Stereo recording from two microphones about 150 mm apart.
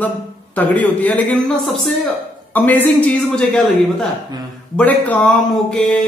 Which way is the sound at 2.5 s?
10° left (ahead or behind).